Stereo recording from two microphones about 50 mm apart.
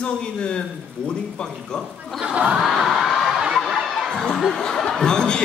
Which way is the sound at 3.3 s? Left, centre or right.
Centre.